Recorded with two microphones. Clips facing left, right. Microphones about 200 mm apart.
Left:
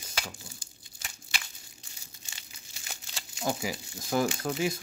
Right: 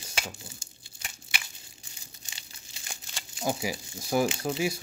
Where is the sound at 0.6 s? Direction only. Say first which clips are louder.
Right 1 dB; 25° right (ahead or behind).